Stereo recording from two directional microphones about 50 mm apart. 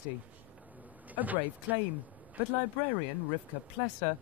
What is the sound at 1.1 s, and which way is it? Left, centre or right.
Speech, right.